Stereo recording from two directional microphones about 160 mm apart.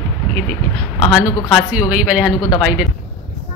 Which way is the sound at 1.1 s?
5° right (ahead or behind).